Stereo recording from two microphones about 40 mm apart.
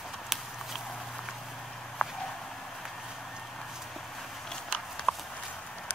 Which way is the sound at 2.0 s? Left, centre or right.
Centre.